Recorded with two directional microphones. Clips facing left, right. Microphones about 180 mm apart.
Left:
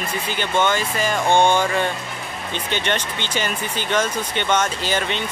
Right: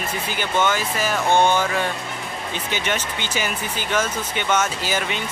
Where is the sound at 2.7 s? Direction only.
5° right (ahead or behind).